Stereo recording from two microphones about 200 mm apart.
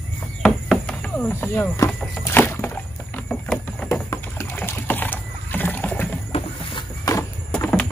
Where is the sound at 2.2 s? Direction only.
10° left (ahead or behind).